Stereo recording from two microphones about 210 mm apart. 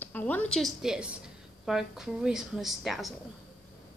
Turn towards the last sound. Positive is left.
turn(degrees=0)  # may be behind; listen again after turning